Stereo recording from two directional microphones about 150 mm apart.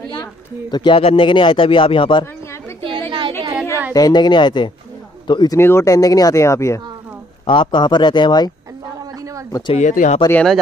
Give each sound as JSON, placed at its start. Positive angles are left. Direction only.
{"t": 0.1, "sound": "speech", "side_deg": 30}
{"t": 3.1, "sound": "a sound", "side_deg": -35}
{"t": 3.9, "sound": "a man's voice", "side_deg": 30}
{"t": 5.6, "sound": "speech", "side_deg": 20}
{"t": 7.4, "sound": "speech", "side_deg": 35}
{"t": 9.5, "sound": "speech", "side_deg": 30}
{"t": 9.8, "sound": "speech", "side_deg": 55}
{"t": 10.3, "sound": "speech", "side_deg": 5}